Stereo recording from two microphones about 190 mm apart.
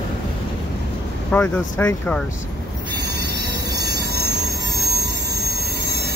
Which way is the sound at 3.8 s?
60° right (ahead or behind).